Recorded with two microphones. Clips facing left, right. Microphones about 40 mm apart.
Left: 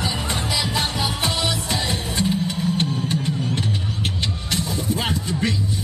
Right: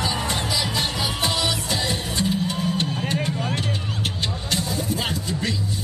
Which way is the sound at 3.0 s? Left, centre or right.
Right.